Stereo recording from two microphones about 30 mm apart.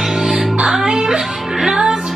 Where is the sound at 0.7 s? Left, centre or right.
Right.